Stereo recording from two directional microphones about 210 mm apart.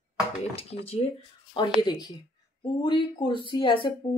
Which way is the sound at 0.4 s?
30° left (ahead or behind).